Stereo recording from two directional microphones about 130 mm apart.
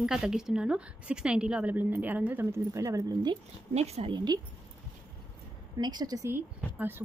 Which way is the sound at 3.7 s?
55° right (ahead or behind).